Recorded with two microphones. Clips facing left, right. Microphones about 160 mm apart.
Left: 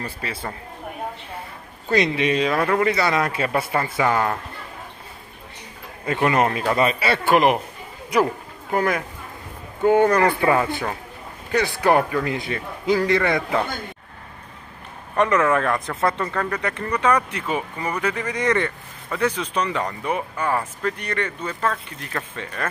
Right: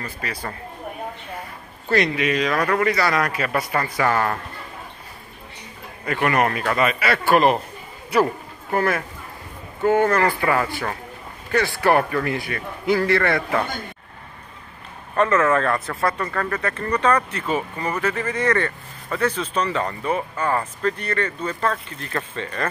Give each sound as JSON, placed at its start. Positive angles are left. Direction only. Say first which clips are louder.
{"t": 0.0, "sound": "speech", "louder": "even", "side_deg": 25}
{"t": 1.9, "sound": "speech", "louder": "left 1 dB", "side_deg": 25}
{"t": 6.0, "sound": "speech", "louder": "left 1 dB", "side_deg": 20}
{"t": 7.2, "sound": "speech", "louder": "right 1 dB", "side_deg": 15}
{"t": 15.1, "sound": "speech", "louder": "even", "side_deg": 15}